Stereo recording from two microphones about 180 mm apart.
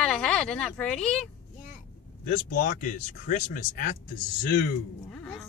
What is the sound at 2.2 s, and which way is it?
Speech, 55° left (ahead or behind).